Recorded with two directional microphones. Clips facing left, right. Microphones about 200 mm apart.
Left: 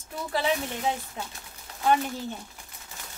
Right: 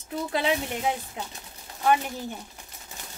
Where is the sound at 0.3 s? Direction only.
20° right (ahead or behind).